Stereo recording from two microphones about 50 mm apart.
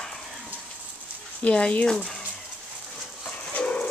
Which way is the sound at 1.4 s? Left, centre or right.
Left.